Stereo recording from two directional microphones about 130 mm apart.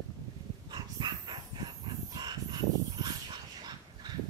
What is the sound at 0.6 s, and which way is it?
Dog, 35° right (ahead or behind).